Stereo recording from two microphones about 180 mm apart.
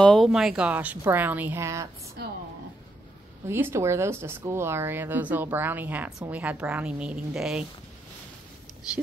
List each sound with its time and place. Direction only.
0.0 s speech: centre (ahead or behind); by 1.9 s 15° right (ahead or behind)
2.2 s a woman's voice: 60° right (ahead or behind)
3.4 s speech: 10° right (ahead or behind)